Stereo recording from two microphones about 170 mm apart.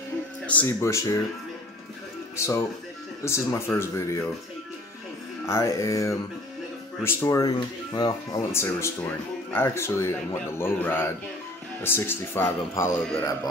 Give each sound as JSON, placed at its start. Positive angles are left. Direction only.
{"t": 0.5, "sound": "speech", "side_deg": 10}
{"t": 2.3, "sound": "speech", "side_deg": 15}
{"t": 5.5, "sound": "music", "side_deg": 20}
{"t": 7.0, "sound": "speech", "side_deg": 15}